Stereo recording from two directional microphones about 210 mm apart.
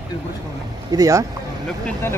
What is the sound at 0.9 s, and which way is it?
Speech, 15° right (ahead or behind).